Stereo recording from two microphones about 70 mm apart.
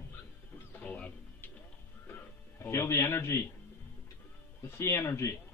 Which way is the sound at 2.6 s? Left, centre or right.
Left.